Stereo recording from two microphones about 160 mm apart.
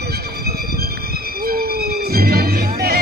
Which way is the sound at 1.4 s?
70° right (ahead or behind).